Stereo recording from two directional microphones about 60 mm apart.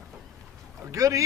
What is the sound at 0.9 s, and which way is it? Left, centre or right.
Speech, right.